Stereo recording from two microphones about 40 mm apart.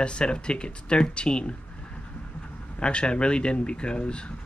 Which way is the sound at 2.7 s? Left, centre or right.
Left.